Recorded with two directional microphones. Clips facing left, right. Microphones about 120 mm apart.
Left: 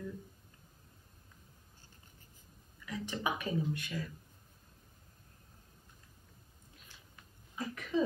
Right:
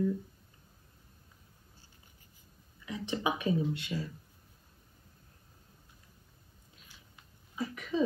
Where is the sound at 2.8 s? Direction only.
20° right (ahead or behind).